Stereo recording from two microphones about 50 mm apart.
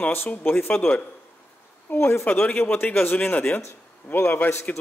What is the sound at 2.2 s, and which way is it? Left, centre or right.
Speech, left.